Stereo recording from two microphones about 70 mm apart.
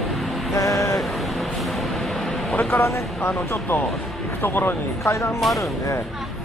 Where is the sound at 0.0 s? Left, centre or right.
Centre.